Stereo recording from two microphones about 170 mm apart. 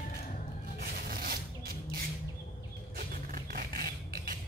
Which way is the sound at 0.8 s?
60° right (ahead or behind).